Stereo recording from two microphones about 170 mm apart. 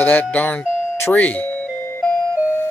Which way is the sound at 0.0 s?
10° left (ahead or behind).